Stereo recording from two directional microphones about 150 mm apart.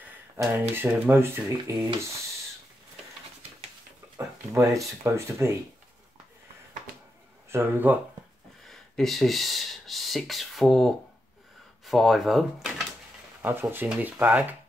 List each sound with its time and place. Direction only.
0.4 s speech: 10° right (ahead or behind)
5.0 s speech: 20° right (ahead or behind)
7.4 s speech: 15° right (ahead or behind)
8.6 s speech: centre (ahead or behind)
13.4 s speech: 15° right (ahead or behind)